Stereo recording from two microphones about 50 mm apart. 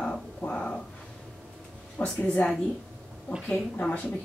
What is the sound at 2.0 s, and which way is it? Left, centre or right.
Speech, left.